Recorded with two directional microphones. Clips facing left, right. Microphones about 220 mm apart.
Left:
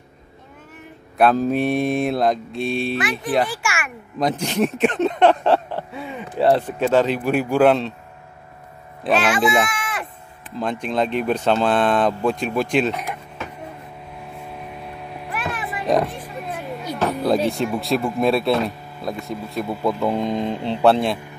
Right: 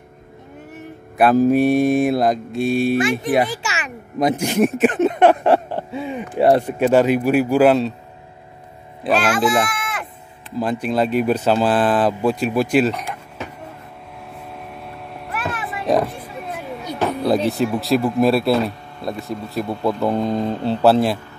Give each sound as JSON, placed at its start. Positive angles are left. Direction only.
{"t": 1.1, "sound": "speech", "side_deg": -5}
{"t": 3.0, "sound": "speech", "side_deg": -25}
{"t": 3.6, "sound": "a sound", "side_deg": -20}
{"t": 4.2, "sound": "speech", "side_deg": -10}
{"t": 9.0, "sound": "speech", "side_deg": -5}
{"t": 10.6, "sound": "speech", "side_deg": -5}
{"t": 14.3, "sound": "vehicle", "side_deg": 0}
{"t": 20.6, "sound": "speech", "side_deg": -5}